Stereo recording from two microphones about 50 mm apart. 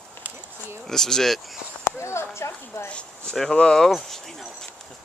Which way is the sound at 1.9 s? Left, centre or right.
Left.